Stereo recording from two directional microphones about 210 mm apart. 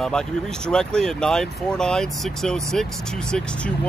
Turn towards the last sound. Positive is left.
turn(degrees=5)  # may be behind; listen again after turning